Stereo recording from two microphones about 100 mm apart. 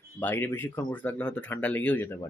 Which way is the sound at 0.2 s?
20° left (ahead or behind).